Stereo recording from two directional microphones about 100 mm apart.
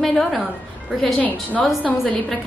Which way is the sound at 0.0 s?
5° left (ahead or behind).